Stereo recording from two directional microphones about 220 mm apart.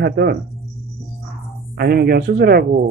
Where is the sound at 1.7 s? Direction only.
45° right (ahead or behind).